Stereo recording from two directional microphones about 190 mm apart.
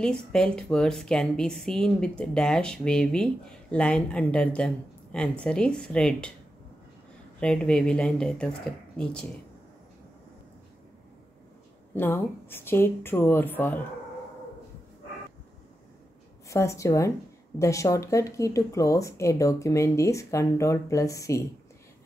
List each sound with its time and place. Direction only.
0.0 s a woman's voice: 5° left (ahead or behind)
7.3 s a woman's voice: 5° left (ahead or behind)
11.9 s speech: 10° left (ahead or behind)
16.4 s speech: 15° left (ahead or behind)